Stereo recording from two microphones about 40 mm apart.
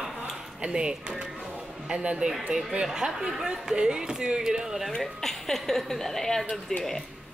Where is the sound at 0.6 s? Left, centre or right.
Right.